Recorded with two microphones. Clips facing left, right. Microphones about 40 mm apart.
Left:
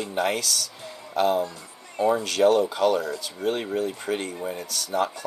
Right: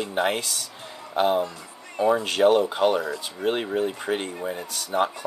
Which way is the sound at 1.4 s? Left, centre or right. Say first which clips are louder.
Right 1 dB; centre.